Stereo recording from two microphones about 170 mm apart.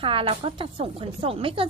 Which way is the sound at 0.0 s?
30° right (ahead or behind).